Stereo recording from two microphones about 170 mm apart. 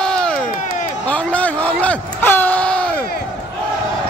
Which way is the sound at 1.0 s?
10° left (ahead or behind).